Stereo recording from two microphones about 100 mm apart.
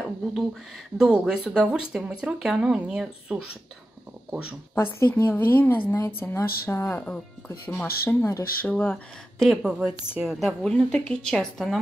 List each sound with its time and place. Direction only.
0.9 s speech: 5° right (ahead or behind)
4.9 s speech: 20° left (ahead or behind)
8.6 s speech: 15° left (ahead or behind)
9.4 s a woman's voice: centre (ahead or behind)
10.6 s speech: 10° left (ahead or behind)